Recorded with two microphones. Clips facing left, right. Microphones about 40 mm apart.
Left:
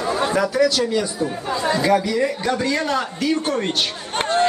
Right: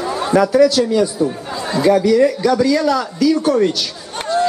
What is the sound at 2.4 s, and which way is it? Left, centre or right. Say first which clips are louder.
Speech: right 7 dB; left.